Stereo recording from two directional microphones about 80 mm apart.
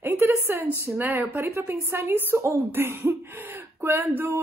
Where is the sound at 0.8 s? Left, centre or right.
Right.